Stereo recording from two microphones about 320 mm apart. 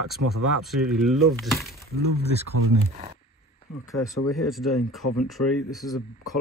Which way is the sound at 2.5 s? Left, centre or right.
Right.